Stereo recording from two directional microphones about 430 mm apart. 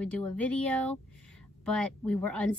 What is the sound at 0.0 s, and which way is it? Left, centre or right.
A woman's voice, centre.